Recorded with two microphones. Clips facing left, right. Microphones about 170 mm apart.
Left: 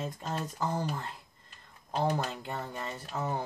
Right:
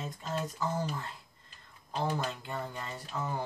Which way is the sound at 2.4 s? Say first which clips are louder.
Left 1 dB; 40° left (ahead or behind).